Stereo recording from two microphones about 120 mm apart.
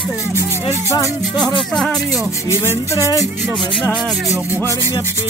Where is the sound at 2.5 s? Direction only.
25° left (ahead or behind).